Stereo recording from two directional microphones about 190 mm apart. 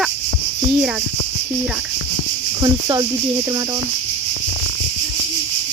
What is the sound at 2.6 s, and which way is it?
Speech, 20° right (ahead or behind).